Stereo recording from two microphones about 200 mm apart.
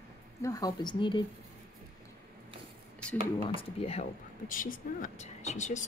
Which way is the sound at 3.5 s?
30° left (ahead or behind).